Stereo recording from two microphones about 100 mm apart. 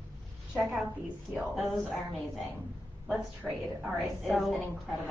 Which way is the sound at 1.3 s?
5° right (ahead or behind).